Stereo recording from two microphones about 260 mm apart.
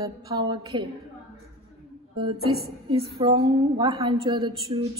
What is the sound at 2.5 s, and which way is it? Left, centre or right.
A woman's voice, centre.